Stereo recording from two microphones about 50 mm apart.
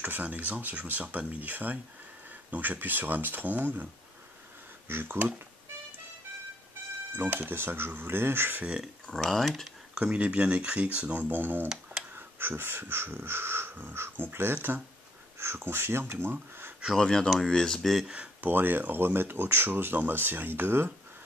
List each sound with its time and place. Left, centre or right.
0.0 s speech: right
4.8 s speech: right
7.2 s speech: right
9.1 s speech: centre
9.9 s speech: right
11.1 s speech: right
15.3 s speech: right
16.9 s speech: centre
18.0 s speech: right
18.4 s speech: right